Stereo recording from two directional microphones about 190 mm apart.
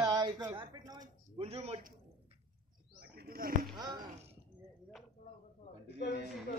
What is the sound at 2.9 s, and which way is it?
Bird, 55° right (ahead or behind).